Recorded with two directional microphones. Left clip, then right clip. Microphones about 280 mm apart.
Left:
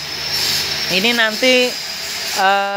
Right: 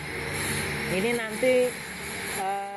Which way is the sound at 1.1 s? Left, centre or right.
Left.